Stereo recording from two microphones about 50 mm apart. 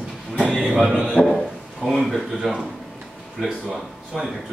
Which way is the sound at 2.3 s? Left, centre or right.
Centre.